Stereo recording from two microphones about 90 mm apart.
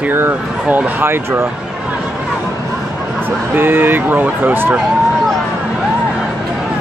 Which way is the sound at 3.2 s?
20° right (ahead or behind).